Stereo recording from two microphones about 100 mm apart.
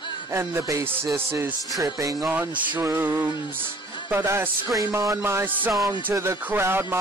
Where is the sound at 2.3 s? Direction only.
20° right (ahead or behind).